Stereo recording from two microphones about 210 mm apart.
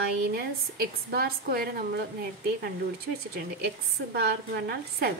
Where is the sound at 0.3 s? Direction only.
45° right (ahead or behind).